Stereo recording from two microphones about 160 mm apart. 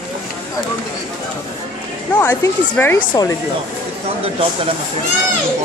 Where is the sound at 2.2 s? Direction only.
15° left (ahead or behind).